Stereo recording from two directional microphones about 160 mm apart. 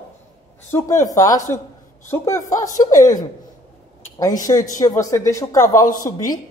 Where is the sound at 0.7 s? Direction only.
20° left (ahead or behind).